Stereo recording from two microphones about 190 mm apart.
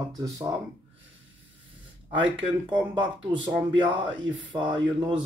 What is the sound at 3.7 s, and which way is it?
Speech, 25° right (ahead or behind).